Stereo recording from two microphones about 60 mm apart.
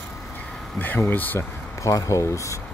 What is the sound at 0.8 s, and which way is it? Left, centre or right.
Speech, left.